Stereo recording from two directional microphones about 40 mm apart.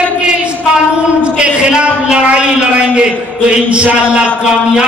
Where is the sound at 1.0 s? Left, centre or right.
Right.